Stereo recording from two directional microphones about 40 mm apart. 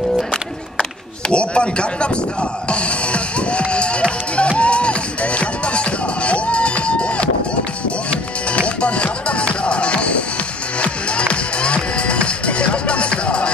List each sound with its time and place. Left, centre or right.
1.3 s speech: left
2.7 s music: left